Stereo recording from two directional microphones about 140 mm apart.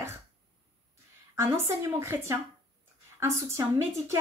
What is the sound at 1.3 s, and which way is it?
Speech, 20° right (ahead or behind).